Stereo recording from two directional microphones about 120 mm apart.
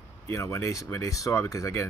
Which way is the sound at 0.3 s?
20° left (ahead or behind).